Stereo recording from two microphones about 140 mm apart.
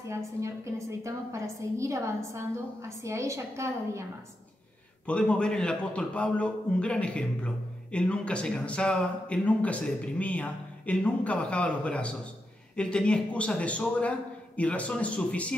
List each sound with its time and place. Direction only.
0.4 s a woman's voice: 20° right (ahead or behind)
5.0 s a man's voice: 5° left (ahead or behind)